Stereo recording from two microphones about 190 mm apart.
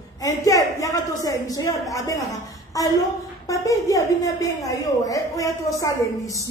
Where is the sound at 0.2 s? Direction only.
15° left (ahead or behind).